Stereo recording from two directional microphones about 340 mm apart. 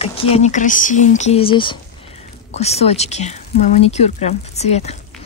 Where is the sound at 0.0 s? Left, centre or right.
Centre.